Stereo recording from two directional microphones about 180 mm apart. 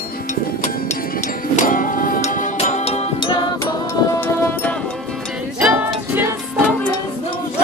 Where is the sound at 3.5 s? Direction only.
15° left (ahead or behind).